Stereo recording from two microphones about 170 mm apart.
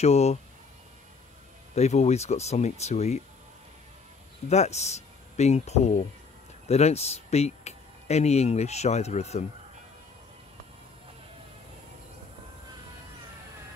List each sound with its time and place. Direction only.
0.0 s speech: 40° left (ahead or behind)
1.8 s speech: 40° left (ahead or behind)
4.5 s speech: 40° left (ahead or behind)